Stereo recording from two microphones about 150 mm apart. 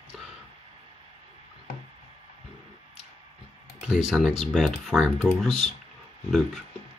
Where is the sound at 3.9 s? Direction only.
5° right (ahead or behind).